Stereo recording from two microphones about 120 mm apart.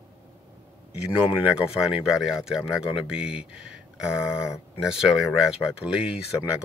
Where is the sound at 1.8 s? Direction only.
5° right (ahead or behind).